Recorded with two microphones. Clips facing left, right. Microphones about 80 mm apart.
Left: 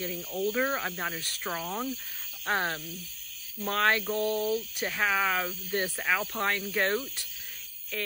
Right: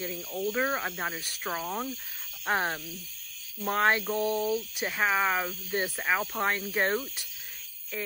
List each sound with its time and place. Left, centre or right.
0.0 s speech: centre